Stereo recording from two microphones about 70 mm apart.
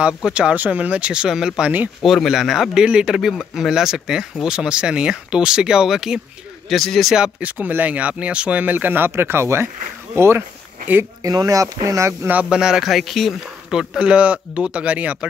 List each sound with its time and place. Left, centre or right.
0.0 s speech: centre
7.3 s speech: right
11.2 s speech: right
12.4 s speech: centre
13.7 s speech: centre